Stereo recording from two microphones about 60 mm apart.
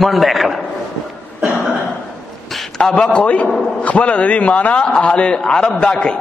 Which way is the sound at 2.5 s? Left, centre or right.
Centre.